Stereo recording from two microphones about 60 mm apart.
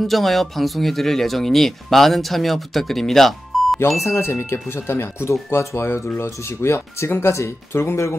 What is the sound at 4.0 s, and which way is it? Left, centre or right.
Speech, left.